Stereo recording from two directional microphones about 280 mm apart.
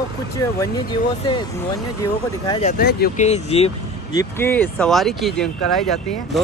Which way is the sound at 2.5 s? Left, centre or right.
Left.